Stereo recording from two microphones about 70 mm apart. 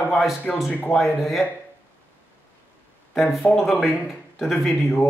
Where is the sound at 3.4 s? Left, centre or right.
Left.